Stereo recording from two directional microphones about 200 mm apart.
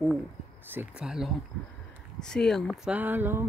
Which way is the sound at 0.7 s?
5° right (ahead or behind).